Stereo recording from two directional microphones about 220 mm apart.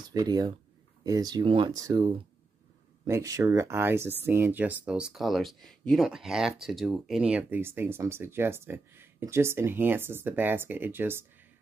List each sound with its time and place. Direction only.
0.1 s speech: 20° right (ahead or behind)